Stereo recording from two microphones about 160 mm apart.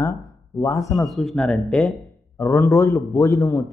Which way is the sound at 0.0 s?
20° left (ahead or behind).